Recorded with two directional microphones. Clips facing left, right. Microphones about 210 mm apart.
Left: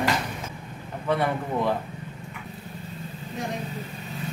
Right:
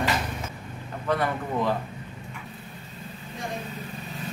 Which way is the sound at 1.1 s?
15° left (ahead or behind).